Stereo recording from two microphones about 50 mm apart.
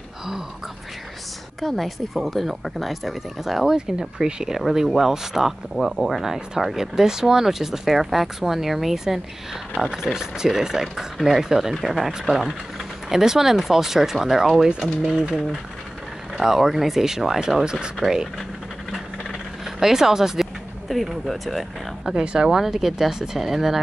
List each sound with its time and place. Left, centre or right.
1.6 s speech: centre
16.3 s speech: centre
17.6 s speech: centre
19.6 s speech: centre
22.1 s speech: centre